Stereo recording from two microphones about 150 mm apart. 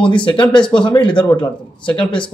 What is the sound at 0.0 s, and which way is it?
Speech, 35° left (ahead or behind).